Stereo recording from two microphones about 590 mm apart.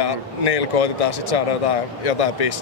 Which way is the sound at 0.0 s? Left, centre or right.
Left.